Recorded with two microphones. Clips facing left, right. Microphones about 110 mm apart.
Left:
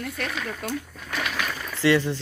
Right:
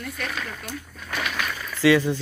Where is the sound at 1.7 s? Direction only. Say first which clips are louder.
Right 2 dB; 10° right (ahead or behind).